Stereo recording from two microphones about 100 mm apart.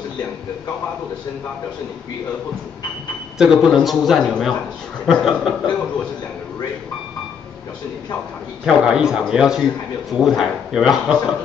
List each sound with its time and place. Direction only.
3.3 s a man's voice: centre (ahead or behind)
8.6 s a man's voice: 5° right (ahead or behind)